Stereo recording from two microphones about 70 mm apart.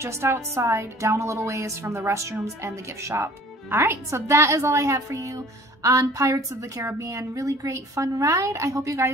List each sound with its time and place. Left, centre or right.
0.0 s a woman's voice: right